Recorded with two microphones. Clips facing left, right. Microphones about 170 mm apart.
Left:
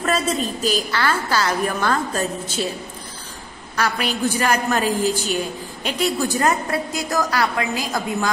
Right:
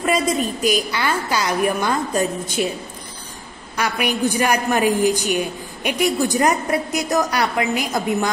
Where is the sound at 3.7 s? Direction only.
15° right (ahead or behind).